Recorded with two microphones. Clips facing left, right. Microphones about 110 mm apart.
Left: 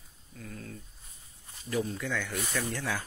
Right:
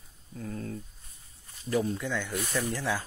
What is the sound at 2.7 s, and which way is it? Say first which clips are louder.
Speech: right 3 dB; 25° right (ahead or behind).